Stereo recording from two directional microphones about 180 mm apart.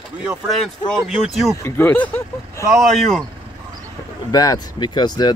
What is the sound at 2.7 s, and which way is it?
Speech, centre (ahead or behind).